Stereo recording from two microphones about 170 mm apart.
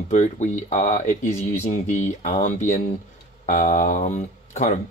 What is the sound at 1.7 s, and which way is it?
Speech, 45° left (ahead or behind).